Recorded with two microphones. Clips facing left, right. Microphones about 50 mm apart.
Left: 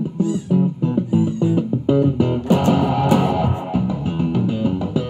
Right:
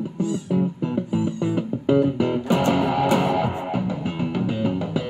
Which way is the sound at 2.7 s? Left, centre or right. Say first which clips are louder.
Left 3 dB; right.